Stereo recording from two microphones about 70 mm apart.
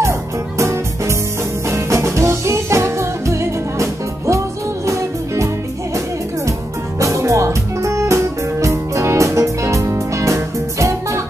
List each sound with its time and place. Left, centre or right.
0.0 s music: right
7.0 s music: right